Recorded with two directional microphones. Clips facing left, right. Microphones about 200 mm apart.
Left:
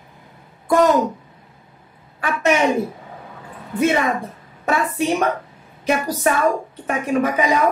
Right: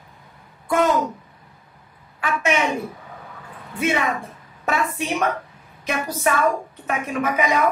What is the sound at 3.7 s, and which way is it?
Speech, 40° left (ahead or behind).